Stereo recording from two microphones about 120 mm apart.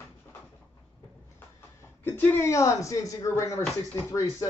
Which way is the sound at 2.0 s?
15° left (ahead or behind).